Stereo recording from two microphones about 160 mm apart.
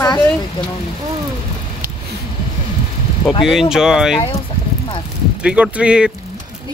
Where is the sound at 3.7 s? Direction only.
5° right (ahead or behind).